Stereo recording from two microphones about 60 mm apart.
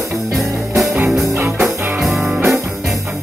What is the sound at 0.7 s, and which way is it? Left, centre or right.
Music, centre.